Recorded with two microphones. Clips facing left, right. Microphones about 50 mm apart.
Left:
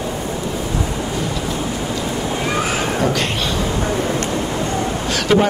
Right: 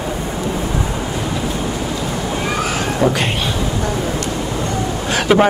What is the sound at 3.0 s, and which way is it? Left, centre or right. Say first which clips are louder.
Speech: right 4 dB; centre.